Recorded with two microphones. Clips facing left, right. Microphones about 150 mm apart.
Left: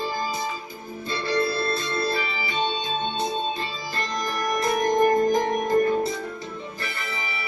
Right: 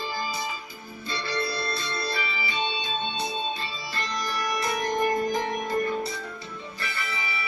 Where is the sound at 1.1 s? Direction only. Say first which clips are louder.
Left 6 dB; 50° left (ahead or behind).